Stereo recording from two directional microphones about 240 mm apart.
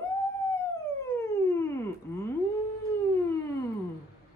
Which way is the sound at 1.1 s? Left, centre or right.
Centre.